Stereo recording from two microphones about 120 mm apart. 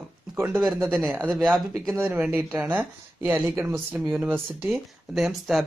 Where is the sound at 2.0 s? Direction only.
10° right (ahead or behind).